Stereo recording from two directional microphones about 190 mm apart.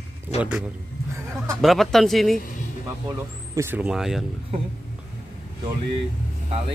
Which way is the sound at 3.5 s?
10° right (ahead or behind).